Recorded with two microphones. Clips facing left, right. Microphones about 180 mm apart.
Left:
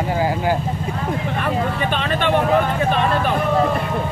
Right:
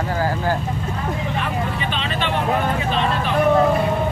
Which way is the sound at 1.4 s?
50° left (ahead or behind).